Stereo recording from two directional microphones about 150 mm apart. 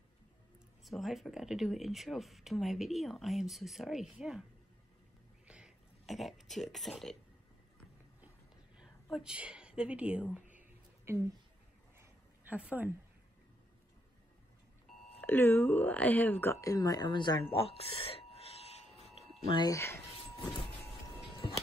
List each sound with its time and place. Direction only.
0.8 s speech: centre (ahead or behind)
5.5 s speech: centre (ahead or behind)
9.1 s a woman's voice: 5° right (ahead or behind)
12.0 s a sound: 10° right (ahead or behind)
15.1 s speech: 15° left (ahead or behind); by 18.9 s 45° left (ahead or behind)
19.5 s speech: 25° left (ahead or behind)